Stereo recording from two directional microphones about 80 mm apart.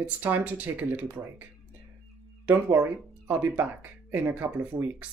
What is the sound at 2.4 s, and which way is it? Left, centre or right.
Speech, right.